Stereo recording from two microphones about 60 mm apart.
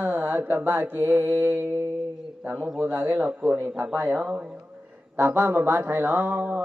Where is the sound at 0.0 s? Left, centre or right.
Right.